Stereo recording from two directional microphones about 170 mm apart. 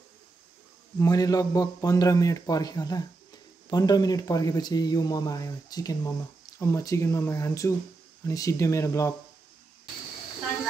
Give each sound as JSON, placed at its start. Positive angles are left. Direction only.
{"t": 0.9, "sound": "speech", "side_deg": 20}